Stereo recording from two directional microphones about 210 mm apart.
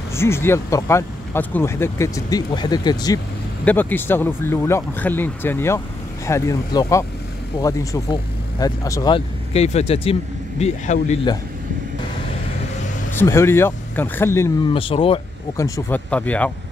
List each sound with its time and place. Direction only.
0.1 s speech: 10° left (ahead or behind); by 11.1 s 35° left (ahead or behind)
13.1 s speech: 10° left (ahead or behind)
14.7 s speech: 25° left (ahead or behind)
15.5 s speech: 15° left (ahead or behind)